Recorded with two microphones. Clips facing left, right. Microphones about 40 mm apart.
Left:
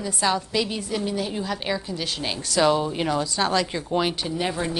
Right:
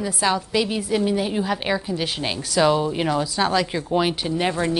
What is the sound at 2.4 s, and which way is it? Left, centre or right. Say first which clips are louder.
A woman's voice: right 2 dB; centre.